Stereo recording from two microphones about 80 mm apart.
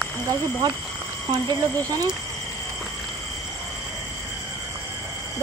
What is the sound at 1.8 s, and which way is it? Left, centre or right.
Speech, right.